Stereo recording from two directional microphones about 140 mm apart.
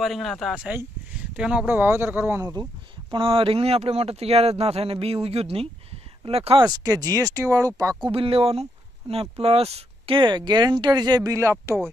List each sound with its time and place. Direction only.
0.0 s speech: centre (ahead or behind); by 2.4 s 15° right (ahead or behind)
2.4 s speech: 30° right (ahead or behind)
6.6 s speech: 25° right (ahead or behind)
8.0 s speech: 40° right (ahead or behind); by 11.5 s 25° right (ahead or behind)